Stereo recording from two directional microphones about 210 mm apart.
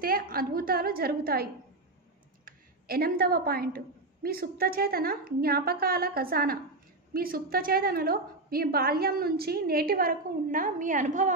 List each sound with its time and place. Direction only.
0.0 s a woman's voice: 45° right (ahead or behind)